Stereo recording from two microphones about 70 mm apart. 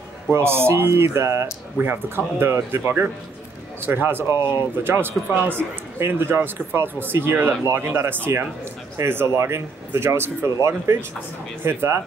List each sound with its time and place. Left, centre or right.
0.3 s speech: right